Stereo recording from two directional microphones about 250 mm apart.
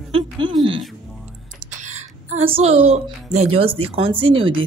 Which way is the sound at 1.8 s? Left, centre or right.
Right.